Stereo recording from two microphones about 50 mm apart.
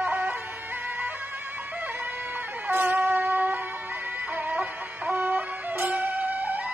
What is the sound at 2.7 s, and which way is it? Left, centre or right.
Shofar, right.